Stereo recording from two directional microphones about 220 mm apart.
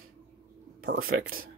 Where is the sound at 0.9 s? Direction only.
65° right (ahead or behind).